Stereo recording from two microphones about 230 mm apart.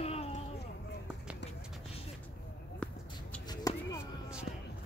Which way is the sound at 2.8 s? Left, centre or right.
Centre.